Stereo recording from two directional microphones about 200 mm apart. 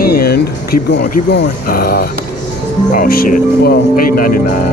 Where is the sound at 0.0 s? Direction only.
50° left (ahead or behind).